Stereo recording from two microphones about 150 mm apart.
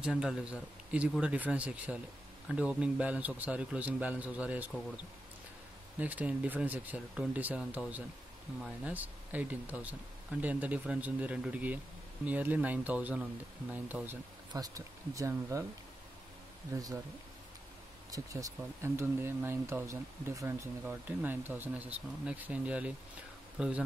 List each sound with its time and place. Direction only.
0.0 s speech: 5° right (ahead or behind)
14.5 s speech: 25° right (ahead or behind)
16.7 s speech: 20° right (ahead or behind)
18.1 s speech: 20° right (ahead or behind); by 23.7 s 5° right (ahead or behind)